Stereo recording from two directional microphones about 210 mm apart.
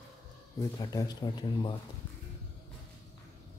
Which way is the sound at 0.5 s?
20° left (ahead or behind).